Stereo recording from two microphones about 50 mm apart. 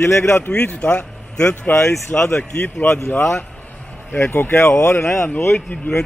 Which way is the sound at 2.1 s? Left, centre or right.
Left.